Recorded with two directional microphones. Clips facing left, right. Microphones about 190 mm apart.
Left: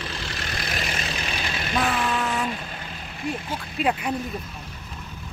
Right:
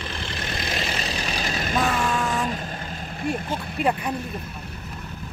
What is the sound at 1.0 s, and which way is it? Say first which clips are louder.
Vehicle: right 2 dB; 40° right (ahead or behind).